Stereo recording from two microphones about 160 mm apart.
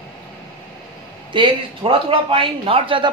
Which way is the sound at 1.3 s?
30° right (ahead or behind).